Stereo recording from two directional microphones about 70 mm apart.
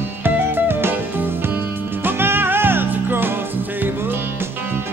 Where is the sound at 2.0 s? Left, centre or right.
Right.